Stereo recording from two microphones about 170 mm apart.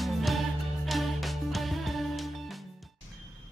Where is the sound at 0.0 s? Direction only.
Centre (ahead or behind).